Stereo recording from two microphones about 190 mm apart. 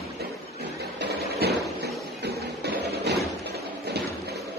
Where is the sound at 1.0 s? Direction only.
60° right (ahead or behind).